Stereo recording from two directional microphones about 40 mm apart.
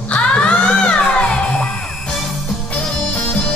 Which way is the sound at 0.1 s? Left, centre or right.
Left.